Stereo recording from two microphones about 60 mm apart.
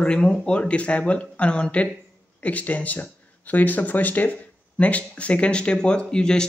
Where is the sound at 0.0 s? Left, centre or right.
Centre.